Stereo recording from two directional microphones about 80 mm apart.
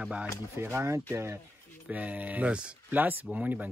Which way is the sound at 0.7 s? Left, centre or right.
Right.